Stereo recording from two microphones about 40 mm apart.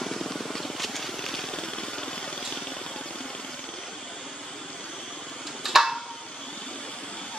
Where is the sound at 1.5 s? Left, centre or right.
Left.